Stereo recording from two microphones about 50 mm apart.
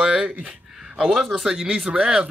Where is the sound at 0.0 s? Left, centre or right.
Centre.